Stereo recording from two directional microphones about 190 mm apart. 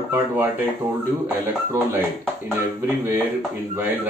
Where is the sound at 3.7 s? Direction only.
10° right (ahead or behind).